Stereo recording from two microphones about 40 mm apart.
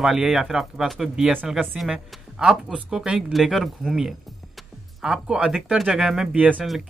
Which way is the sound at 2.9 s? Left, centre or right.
Right.